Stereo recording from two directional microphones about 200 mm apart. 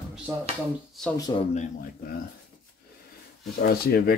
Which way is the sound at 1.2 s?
20° left (ahead or behind).